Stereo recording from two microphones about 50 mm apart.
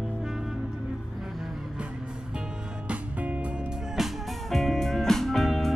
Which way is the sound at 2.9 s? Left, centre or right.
Right.